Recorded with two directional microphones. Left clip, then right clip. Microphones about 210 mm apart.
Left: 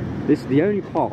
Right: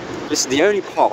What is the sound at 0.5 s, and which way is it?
Speech, 15° right (ahead or behind).